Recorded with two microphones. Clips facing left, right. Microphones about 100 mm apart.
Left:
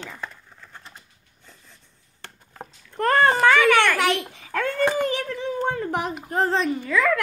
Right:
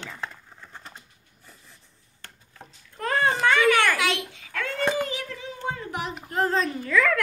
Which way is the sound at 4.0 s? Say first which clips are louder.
Left 4 dB; 45° left (ahead or behind).